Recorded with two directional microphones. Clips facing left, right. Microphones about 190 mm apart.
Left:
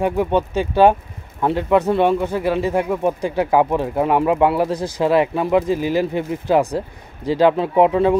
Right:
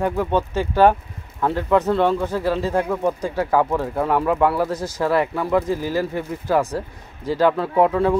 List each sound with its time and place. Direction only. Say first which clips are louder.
0.0 s speech: left 2 dB; 20° left (ahead or behind)